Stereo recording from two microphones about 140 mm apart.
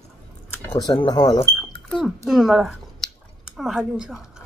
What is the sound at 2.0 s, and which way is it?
A woman's voice, centre (ahead or behind).